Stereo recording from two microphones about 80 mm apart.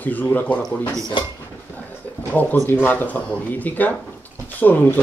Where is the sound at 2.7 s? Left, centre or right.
Left.